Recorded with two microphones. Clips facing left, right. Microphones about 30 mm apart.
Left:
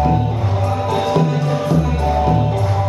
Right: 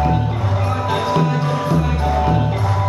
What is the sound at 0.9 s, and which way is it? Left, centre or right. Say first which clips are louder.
Music: left 1 dB; centre.